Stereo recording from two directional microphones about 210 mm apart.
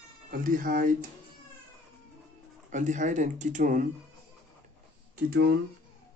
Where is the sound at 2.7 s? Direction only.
35° right (ahead or behind).